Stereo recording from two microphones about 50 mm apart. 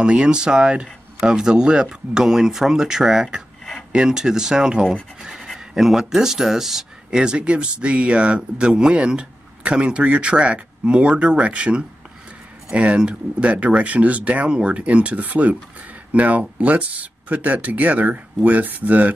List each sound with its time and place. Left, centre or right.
0.0 s speech: centre
5.2 s scratch: centre
5.5 s speech: centre; by 19.1 s right